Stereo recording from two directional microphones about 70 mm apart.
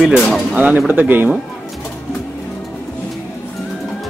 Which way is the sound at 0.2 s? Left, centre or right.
Centre.